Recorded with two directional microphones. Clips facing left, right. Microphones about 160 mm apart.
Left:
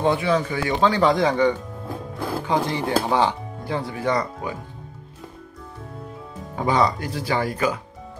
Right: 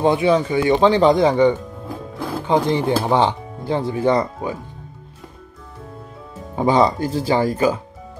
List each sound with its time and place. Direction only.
0.0 s speech: 20° right (ahead or behind)
6.5 s speech: 25° right (ahead or behind)